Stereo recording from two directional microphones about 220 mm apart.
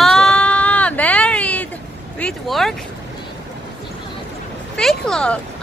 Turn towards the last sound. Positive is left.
turn(degrees=5)  # may be behind; listen again after turning